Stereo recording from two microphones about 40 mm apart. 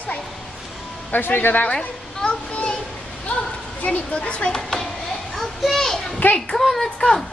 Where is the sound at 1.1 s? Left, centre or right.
Left.